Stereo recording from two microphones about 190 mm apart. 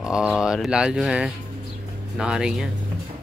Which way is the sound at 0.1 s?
5° right (ahead or behind).